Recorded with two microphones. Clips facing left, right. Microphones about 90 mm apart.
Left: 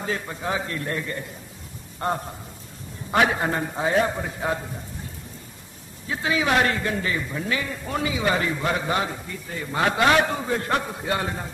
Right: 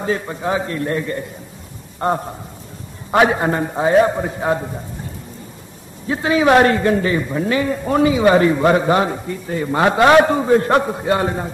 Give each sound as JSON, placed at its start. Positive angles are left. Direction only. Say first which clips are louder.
{"t": 0.0, "sound": "a man's voice", "louder": "right 7 dB", "side_deg": -30}
{"t": 6.0, "sound": "a man's voice", "louder": "right 9 dB", "side_deg": -40}